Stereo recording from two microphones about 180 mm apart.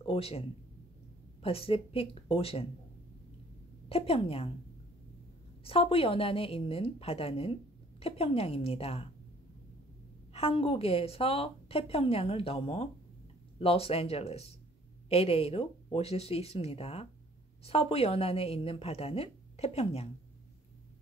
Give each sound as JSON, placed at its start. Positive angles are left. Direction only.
{"t": 0.0, "sound": "a woman's voice", "side_deg": 30}
{"t": 3.9, "sound": "a woman's voice", "side_deg": 30}
{"t": 5.6, "sound": "a woman's voice", "side_deg": 30}
{"t": 10.3, "sound": "a woman's voice", "side_deg": 35}